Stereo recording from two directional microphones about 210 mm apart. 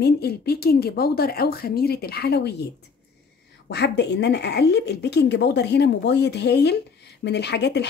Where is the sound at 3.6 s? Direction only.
55° left (ahead or behind).